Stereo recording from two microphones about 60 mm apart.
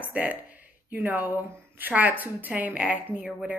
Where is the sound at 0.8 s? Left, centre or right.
Right.